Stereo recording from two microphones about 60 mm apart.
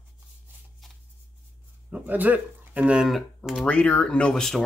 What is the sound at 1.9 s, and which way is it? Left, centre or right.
Speech, right.